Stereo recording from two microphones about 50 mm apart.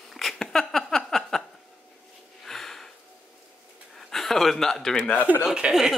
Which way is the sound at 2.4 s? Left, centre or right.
Centre.